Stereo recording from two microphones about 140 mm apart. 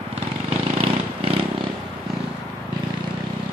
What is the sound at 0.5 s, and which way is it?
Vehicle, 45° right (ahead or behind).